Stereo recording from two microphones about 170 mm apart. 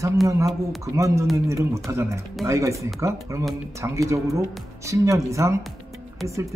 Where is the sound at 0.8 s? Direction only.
20° right (ahead or behind).